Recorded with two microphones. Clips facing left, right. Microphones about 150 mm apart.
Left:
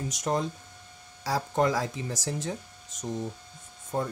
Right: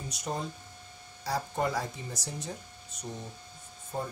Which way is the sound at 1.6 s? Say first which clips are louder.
Left 8 dB; 90° left.